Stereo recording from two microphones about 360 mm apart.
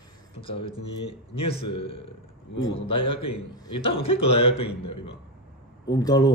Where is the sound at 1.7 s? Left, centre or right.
Centre.